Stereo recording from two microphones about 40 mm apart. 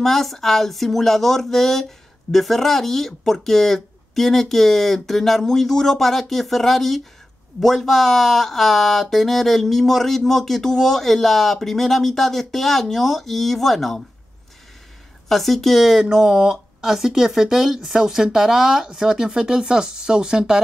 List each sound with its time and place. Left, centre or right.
0.0 s speech: centre
15.2 s speech: centre
15.8 s speech: centre